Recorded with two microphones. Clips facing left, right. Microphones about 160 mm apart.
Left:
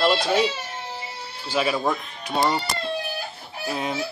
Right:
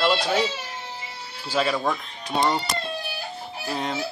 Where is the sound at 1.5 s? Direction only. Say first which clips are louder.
Left 1 dB; 10° left (ahead or behind).